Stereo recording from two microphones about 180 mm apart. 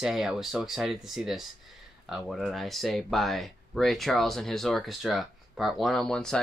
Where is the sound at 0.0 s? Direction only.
Centre (ahead or behind).